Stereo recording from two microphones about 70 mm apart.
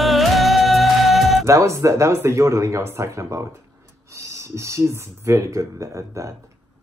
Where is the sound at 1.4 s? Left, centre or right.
Right.